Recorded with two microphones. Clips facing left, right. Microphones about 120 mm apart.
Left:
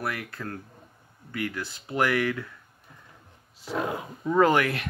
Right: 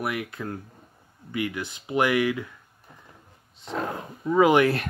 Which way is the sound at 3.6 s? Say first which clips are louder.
Left 1 dB; 5° left (ahead or behind).